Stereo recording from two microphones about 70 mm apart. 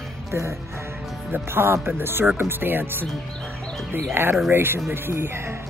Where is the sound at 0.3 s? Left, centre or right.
Right.